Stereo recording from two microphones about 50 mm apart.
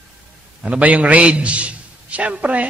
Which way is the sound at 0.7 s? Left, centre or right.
Right.